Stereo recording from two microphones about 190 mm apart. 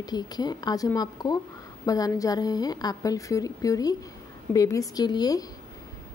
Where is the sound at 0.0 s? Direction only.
20° left (ahead or behind).